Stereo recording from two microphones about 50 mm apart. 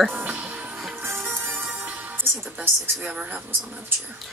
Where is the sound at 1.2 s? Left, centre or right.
Right.